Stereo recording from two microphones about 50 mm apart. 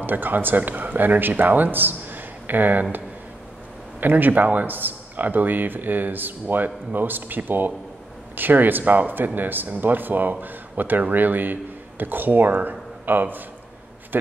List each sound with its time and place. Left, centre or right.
0.0 s speech: right
4.0 s speech: right